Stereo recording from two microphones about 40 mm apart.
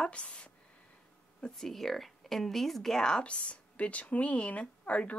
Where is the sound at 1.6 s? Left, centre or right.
Centre.